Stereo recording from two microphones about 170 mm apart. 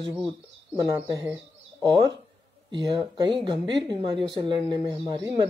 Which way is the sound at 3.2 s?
30° right (ahead or behind).